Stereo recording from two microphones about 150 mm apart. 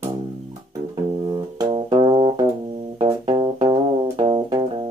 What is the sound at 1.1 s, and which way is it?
Music, 30° right (ahead or behind).